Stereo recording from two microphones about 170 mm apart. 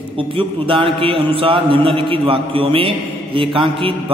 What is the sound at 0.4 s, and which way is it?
A man's voice, 30° right (ahead or behind).